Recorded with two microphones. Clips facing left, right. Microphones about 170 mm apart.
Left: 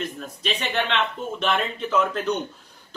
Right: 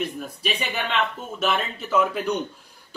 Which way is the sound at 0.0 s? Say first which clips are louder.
Right 2 dB; 10° right (ahead or behind).